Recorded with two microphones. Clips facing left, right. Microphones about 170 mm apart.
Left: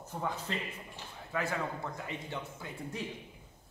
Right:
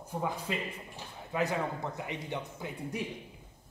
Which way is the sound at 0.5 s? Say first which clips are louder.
Right 3 dB; 10° right (ahead or behind).